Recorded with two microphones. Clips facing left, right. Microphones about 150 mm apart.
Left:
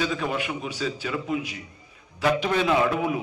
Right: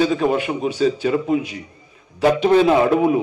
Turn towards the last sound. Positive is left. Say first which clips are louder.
# right 8 dB
turn(degrees=-35)  # may be behind; listen again after turning